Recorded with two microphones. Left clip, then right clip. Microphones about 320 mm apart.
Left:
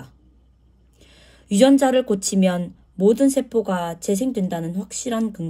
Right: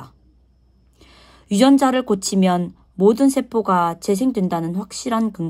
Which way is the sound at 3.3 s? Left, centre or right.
Right.